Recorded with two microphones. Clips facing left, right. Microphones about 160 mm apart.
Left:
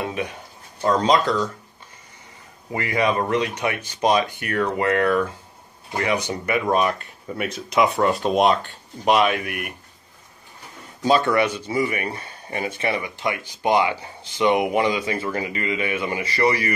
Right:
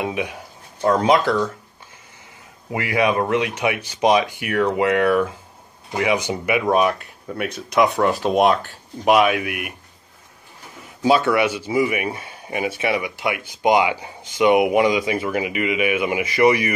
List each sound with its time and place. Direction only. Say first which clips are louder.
0.0 s speech: right 2 dB; 10° right (ahead or behind)
2.7 s speech: right 2 dB; 5° right (ahead or behind)
11.0 s speech: right 2 dB; 5° right (ahead or behind)